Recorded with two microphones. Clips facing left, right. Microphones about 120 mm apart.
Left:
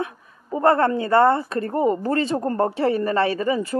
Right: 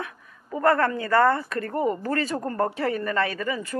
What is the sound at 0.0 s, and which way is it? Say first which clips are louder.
A woman's voice: left 7 dB; 25° left (ahead or behind).